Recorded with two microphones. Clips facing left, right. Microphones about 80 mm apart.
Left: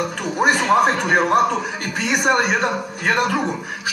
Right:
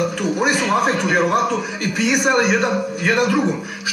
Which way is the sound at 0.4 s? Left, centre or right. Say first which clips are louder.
Left 3 dB; left.